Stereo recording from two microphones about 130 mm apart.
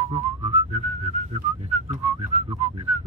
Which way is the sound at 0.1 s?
55° right (ahead or behind).